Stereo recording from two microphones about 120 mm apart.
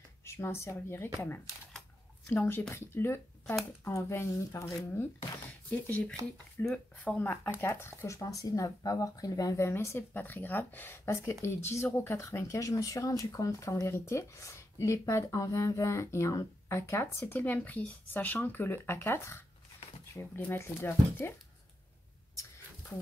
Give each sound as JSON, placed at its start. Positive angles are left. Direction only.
{"t": 0.2, "sound": "speech", "side_deg": 20}
{"t": 5.5, "sound": "speech", "side_deg": 10}
{"t": 22.3, "sound": "a sound", "side_deg": 25}